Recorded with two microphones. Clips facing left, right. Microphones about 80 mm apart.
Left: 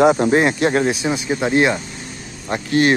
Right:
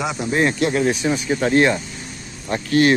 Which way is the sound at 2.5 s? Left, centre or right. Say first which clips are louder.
Even; left.